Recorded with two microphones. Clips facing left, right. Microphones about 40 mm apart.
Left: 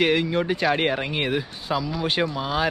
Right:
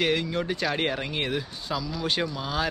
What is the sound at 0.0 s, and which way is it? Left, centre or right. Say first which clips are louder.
Speech: left 5 dB; centre.